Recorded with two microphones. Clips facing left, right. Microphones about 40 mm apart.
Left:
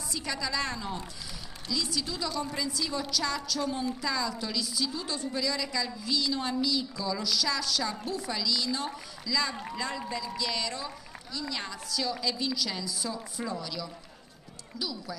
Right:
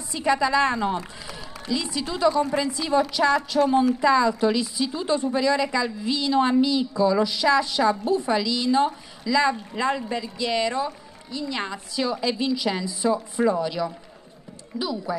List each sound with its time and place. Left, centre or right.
0.1 s a woman's voice: right